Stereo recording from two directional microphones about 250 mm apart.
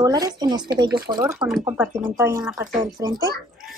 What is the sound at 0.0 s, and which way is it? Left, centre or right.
A woman's voice, centre.